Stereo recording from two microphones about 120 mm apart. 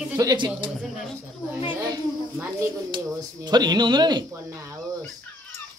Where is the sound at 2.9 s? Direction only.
35° right (ahead or behind).